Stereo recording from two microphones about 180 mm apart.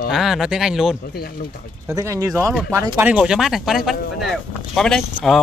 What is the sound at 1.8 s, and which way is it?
Speech, 20° right (ahead or behind).